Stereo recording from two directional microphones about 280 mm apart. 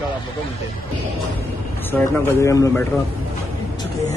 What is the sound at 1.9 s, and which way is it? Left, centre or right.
Speech, centre.